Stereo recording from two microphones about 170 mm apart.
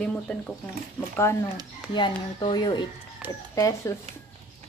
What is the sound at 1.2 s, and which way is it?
A woman's voice, 15° left (ahead or behind).